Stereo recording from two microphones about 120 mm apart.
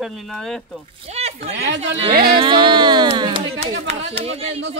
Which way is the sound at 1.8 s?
50° right (ahead or behind).